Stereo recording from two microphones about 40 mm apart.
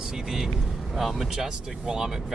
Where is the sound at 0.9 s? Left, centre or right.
Centre.